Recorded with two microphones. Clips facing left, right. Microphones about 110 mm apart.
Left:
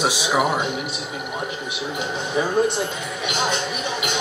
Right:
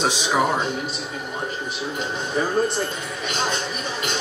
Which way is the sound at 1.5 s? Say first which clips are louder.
Even; 75° left (ahead or behind).